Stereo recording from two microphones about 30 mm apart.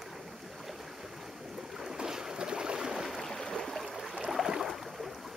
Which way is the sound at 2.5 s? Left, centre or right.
Right.